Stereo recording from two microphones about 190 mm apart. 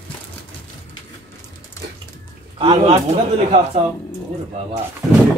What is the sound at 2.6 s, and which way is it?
A man's voice, 35° right (ahead or behind).